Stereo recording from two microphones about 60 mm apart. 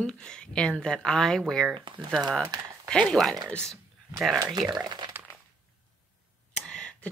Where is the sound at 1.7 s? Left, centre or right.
Centre.